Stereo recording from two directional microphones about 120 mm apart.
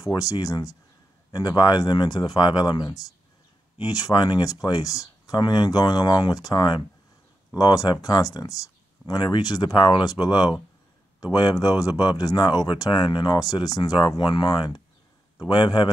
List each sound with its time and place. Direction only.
0.0 s speech: 30° left (ahead or behind)